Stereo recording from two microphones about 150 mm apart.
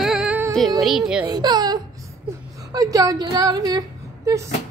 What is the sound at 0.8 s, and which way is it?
Speech, centre (ahead or behind).